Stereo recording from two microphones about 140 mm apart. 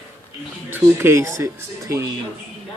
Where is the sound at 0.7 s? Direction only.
15° right (ahead or behind).